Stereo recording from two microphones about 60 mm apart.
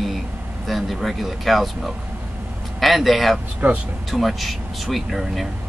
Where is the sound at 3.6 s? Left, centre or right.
Right.